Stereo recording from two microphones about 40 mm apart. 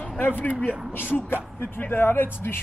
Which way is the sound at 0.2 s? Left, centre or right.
Left.